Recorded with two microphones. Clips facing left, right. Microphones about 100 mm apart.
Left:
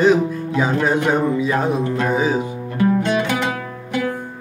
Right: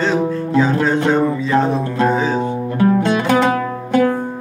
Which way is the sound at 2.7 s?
40° right (ahead or behind).